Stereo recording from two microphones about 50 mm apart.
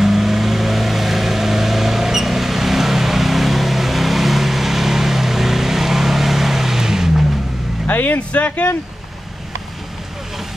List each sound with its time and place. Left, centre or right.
0.0 s vehicle: centre
7.9 s music: left
8.3 s speech: left